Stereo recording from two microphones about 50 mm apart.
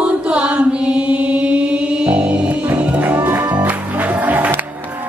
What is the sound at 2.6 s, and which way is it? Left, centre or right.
Music, right.